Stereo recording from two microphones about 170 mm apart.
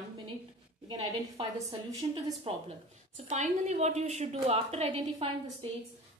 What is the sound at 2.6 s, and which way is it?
A woman's voice, 40° right (ahead or behind).